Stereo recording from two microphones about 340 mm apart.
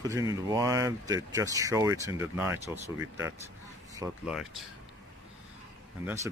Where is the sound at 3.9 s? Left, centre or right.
Centre.